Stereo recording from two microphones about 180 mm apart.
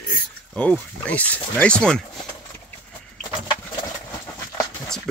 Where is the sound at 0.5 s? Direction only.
5° left (ahead or behind).